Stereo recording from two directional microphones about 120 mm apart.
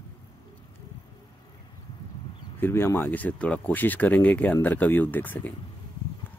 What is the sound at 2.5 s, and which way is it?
Speech, 20° left (ahead or behind).